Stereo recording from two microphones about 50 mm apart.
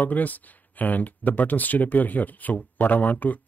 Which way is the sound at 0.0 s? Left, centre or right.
Left.